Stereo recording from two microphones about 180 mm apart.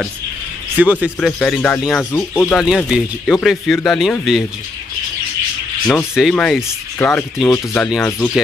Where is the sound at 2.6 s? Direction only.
5° right (ahead or behind).